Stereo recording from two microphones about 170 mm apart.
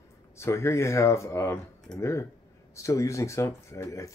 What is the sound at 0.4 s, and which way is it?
Speech, 15° left (ahead or behind).